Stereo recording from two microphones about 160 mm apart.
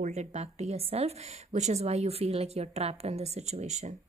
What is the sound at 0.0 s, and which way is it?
A woman's voice, 45° right (ahead or behind).